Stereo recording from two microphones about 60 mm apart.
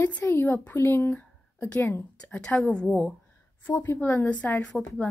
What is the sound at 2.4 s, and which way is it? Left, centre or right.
Speech, centre.